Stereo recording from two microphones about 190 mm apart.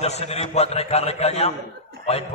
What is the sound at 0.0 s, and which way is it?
A man's voice, 35° left (ahead or behind).